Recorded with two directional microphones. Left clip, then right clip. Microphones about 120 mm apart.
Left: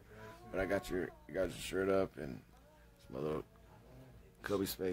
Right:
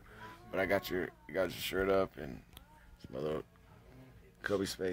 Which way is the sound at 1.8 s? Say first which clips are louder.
Right 2 dB; 15° left (ahead or behind).